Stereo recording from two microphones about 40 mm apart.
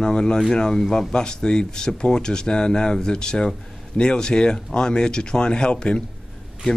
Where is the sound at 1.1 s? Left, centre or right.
Left.